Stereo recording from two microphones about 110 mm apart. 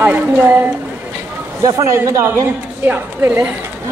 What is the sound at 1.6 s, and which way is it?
A man's voice, 30° right (ahead or behind).